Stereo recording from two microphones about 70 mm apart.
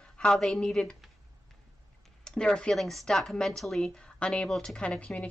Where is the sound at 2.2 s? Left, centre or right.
Centre.